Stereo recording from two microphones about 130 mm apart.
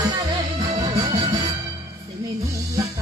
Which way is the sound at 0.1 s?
40° right (ahead or behind).